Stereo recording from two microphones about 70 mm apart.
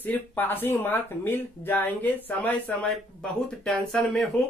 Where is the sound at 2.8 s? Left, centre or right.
Centre.